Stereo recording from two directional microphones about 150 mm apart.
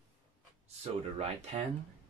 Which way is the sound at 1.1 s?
45° right (ahead or behind).